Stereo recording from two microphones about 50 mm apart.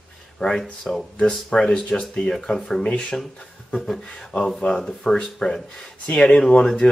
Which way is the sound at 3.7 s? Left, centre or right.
Centre.